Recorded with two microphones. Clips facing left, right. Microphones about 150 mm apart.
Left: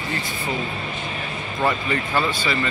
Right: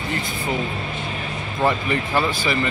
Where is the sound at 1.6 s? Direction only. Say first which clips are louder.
Right 2 dB; 10° right (ahead or behind).